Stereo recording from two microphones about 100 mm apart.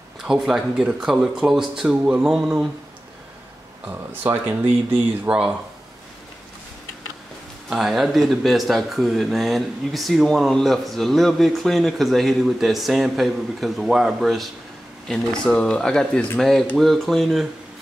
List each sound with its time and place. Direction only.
0.2 s speech: 5° right (ahead or behind)
4.1 s speech: 20° right (ahead or behind)
7.7 s speech: centre (ahead or behind)